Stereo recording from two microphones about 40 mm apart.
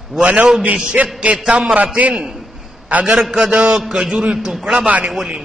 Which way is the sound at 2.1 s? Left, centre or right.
Centre.